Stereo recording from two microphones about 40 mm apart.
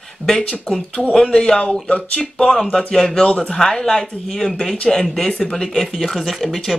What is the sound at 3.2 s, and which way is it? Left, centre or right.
Speech, left.